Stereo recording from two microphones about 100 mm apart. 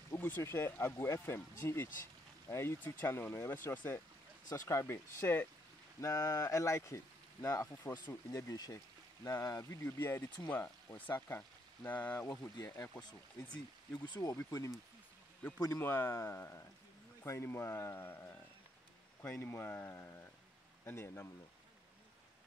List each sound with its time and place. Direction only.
0.1 s speech: 25° left (ahead or behind)
4.5 s speech: 30° left (ahead or behind)
5.9 s speech: 35° left (ahead or behind)
8.3 s speech: 35° left (ahead or behind)
13.9 s speech: 45° left (ahead or behind)
14.2 s speech: 30° left (ahead or behind)
15.8 s speech: 25° left (ahead or behind)
19.3 s speech: 20° left (ahead or behind)